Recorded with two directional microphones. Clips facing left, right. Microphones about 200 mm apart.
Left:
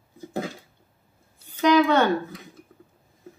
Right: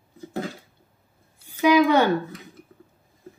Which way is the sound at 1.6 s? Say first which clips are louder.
Right 1 dB; 10° right (ahead or behind).